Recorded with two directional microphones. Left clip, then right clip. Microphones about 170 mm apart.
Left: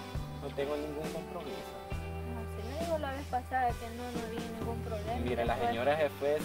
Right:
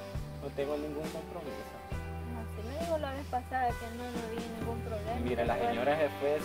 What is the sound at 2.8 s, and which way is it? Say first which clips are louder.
Speech: right 1 dB; centre (ahead or behind).